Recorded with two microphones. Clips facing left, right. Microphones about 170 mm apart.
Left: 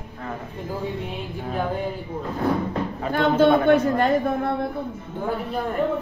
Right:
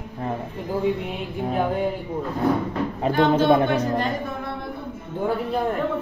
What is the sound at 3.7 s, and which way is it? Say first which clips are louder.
Speech: left 5 dB; 50° left (ahead or behind).